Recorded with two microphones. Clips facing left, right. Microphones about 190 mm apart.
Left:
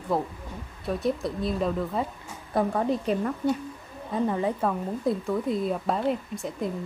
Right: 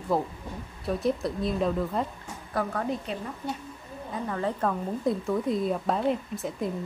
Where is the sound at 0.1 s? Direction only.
Centre (ahead or behind).